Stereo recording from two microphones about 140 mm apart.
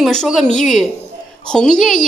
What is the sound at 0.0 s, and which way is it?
A woman's voice, centre (ahead or behind).